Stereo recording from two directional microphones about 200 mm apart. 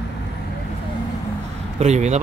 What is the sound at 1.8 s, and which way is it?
Speech, 35° right (ahead or behind).